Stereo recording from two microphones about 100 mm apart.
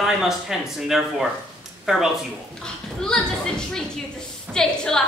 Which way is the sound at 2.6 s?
5° left (ahead or behind).